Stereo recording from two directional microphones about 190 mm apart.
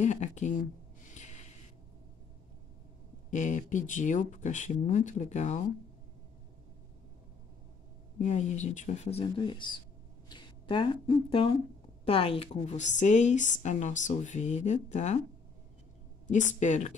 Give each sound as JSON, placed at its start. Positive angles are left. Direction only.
{"t": 0.0, "sound": "a woman's voice", "side_deg": 40}
{"t": 1.1, "sound": "a sound", "side_deg": 40}
{"t": 3.3, "sound": "a woman's voice", "side_deg": 40}
{"t": 8.2, "sound": "a woman's voice", "side_deg": 40}
{"t": 16.3, "sound": "a woman's voice", "side_deg": 40}